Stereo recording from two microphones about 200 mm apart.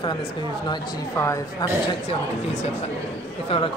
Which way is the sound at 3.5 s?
25° left (ahead or behind).